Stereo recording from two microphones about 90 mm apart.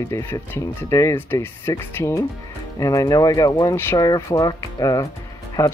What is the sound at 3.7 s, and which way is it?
Speech, 30° left (ahead or behind).